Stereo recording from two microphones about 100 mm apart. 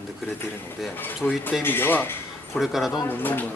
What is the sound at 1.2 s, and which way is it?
Speech, 20° left (ahead or behind).